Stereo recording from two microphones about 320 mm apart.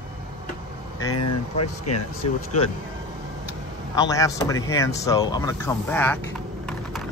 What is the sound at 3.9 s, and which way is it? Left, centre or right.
Speech, centre.